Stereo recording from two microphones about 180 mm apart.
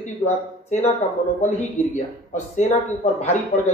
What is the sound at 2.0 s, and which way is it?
Speech, 40° left (ahead or behind).